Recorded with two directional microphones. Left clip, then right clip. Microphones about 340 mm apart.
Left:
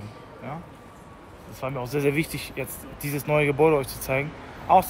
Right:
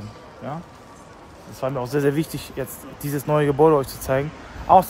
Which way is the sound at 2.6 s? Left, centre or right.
Centre.